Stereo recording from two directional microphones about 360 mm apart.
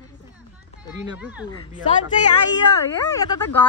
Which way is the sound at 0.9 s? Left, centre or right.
Centre.